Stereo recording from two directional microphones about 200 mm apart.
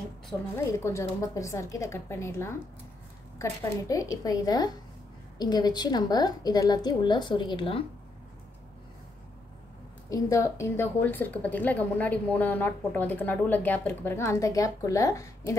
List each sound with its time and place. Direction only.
0.3 s a woman's voice: 15° left (ahead or behind)
10.0 s a woman's voice: 15° left (ahead or behind)